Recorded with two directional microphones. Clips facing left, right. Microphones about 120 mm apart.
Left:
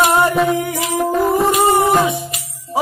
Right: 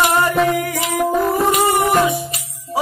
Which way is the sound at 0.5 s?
25° left (ahead or behind).